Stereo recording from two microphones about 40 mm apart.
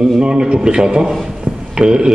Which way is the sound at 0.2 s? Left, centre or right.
Right.